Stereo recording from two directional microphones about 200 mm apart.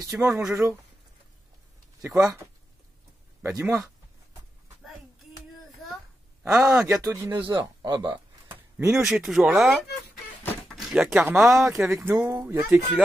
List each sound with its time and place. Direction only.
0.1 s speech: 5° right (ahead or behind)
2.0 s speech: 15° right (ahead or behind)
3.4 s speech: 15° right (ahead or behind)
6.5 s speech: 15° right (ahead or behind)
6.8 s speech: 5° right (ahead or behind)
7.1 s speech: 15° right (ahead or behind)
8.5 s speech: 10° right (ahead or behind)
10.4 s a sound: 10° left (ahead or behind)
10.8 s speech: centre (ahead or behind)